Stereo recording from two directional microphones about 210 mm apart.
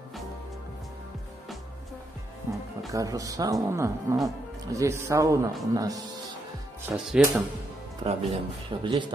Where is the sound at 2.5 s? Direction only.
10° right (ahead or behind).